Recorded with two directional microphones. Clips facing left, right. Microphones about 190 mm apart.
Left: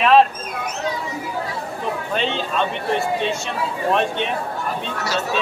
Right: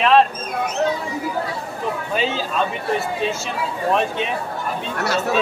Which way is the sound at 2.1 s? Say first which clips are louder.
Right 1 dB; 5° right (ahead or behind).